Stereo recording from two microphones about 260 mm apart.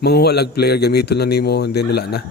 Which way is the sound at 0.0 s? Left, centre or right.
Left.